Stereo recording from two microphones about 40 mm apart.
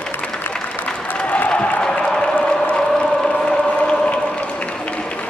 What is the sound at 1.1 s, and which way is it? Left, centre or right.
Applause, left.